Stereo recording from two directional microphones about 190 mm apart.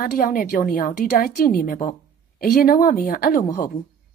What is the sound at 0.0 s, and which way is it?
A woman's voice, 50° left (ahead or behind).